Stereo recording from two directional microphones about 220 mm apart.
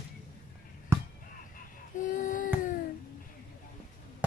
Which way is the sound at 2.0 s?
35° left (ahead or behind).